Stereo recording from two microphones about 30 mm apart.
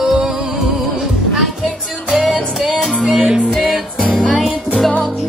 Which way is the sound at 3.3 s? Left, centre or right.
Right.